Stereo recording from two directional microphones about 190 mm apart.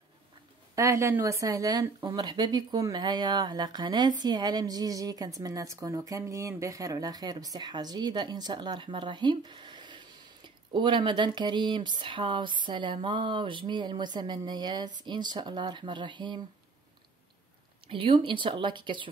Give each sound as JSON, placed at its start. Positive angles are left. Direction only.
{"t": 0.7, "sound": "a woman's voice", "side_deg": -15}
{"t": 17.8, "sound": "a woman's voice", "side_deg": -30}